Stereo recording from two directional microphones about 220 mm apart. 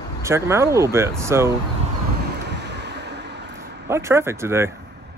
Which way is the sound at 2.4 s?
50° right (ahead or behind).